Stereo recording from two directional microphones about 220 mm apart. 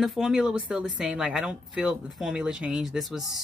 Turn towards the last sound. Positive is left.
turn(degrees=0)  # may be behind; listen again after turning